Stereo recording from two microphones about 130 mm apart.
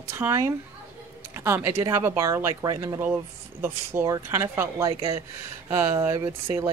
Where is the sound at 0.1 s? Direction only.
20° right (ahead or behind).